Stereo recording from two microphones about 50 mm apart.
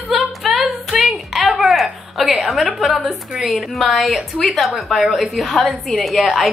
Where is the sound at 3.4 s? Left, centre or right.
Centre.